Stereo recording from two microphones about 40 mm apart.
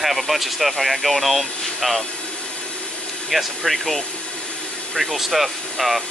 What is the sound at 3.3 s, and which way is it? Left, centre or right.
Speech, centre.